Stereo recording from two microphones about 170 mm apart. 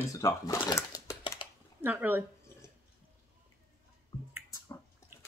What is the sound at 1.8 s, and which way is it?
Speech, 10° right (ahead or behind).